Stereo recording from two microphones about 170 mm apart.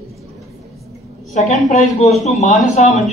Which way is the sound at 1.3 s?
45° left (ahead or behind).